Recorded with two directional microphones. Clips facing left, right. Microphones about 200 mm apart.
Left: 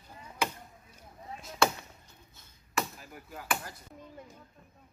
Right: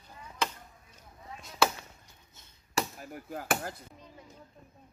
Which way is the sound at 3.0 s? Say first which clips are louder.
Right 6 dB; 50° right (ahead or behind).